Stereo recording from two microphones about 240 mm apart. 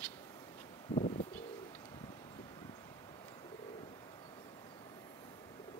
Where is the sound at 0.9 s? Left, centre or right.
Left.